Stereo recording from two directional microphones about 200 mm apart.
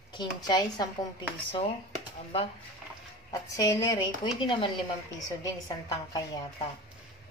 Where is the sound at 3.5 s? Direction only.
15° left (ahead or behind).